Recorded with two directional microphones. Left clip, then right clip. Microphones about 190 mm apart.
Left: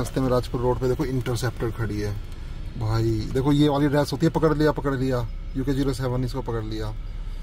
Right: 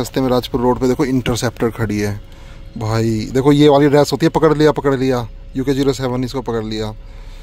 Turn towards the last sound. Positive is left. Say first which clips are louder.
# right 9 dB
turn(degrees=-25)  # may be behind; listen again after turning